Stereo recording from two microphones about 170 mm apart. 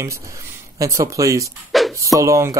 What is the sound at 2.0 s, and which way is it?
Speech, 20° right (ahead or behind).